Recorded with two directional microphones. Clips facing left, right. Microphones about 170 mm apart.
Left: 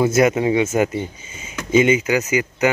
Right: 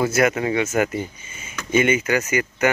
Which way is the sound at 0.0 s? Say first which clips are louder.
Left 4 dB; 20° left (ahead or behind).